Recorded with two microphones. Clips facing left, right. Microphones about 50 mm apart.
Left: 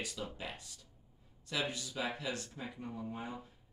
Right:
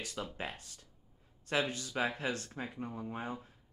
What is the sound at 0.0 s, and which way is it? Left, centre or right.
Speech, right.